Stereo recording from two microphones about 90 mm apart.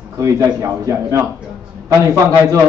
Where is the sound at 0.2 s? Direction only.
35° right (ahead or behind).